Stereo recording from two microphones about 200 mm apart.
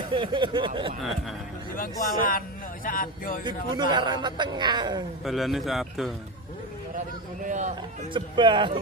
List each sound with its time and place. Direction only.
0.1 s speech: 25° right (ahead or behind)
1.8 s speech: 45° left (ahead or behind)
3.7 s speech: 20° right (ahead or behind)
5.2 s a man's voice: centre (ahead or behind)
7.4 s speech: 40° right (ahead or behind)
8.1 s speech: 25° right (ahead or behind)